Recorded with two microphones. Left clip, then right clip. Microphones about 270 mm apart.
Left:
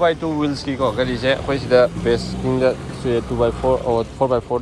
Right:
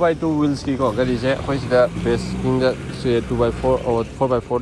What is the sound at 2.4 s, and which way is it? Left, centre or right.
Speech, left.